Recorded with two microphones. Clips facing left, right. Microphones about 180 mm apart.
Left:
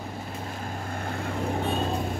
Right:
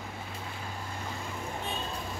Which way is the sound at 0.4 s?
45° left (ahead or behind).